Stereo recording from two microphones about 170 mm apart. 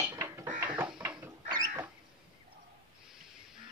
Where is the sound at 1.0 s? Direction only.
10° right (ahead or behind).